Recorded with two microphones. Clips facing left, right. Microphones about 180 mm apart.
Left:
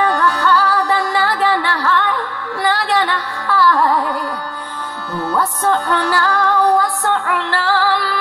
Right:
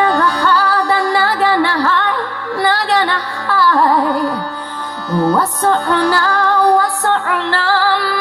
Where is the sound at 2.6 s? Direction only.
35° right (ahead or behind).